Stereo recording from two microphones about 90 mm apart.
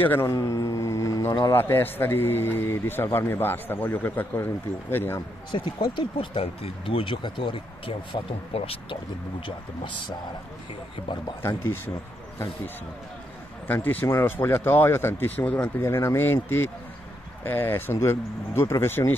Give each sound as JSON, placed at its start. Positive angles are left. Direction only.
{"t": 0.0, "sound": "a man's voice", "side_deg": 20}
{"t": 0.3, "sound": "a sound", "side_deg": 40}
{"t": 1.5, "sound": "a man's voice", "side_deg": 25}
{"t": 5.5, "sound": "speech", "side_deg": 65}
{"t": 11.4, "sound": "a man's voice", "side_deg": 25}
{"t": 13.7, "sound": "a man's voice", "side_deg": 20}
{"t": 15.8, "sound": "a man's voice", "side_deg": 30}